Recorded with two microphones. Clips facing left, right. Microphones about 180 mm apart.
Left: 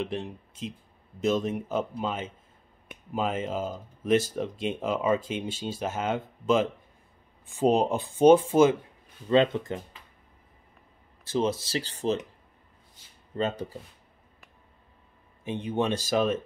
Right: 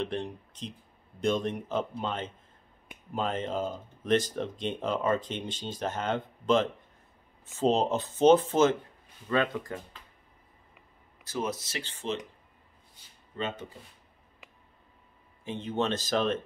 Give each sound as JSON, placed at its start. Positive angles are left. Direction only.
{"t": 0.0, "sound": "speech", "side_deg": 5}
{"t": 9.3, "sound": "speech", "side_deg": 25}
{"t": 11.2, "sound": "speech", "side_deg": 25}
{"t": 13.4, "sound": "speech", "side_deg": 40}
{"t": 15.4, "sound": "speech", "side_deg": 15}